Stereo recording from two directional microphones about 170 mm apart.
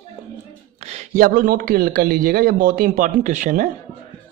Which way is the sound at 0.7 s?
40° right (ahead or behind).